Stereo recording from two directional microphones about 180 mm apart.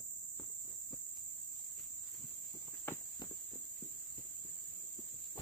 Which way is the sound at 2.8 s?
15° left (ahead or behind).